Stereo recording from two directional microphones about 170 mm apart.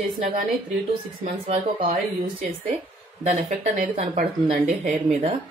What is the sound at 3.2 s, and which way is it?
A woman's voice, 45° right (ahead or behind).